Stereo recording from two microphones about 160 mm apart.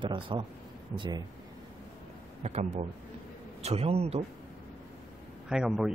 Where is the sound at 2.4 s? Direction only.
45° right (ahead or behind).